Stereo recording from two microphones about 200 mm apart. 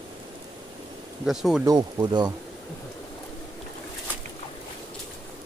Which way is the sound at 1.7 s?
20° right (ahead or behind).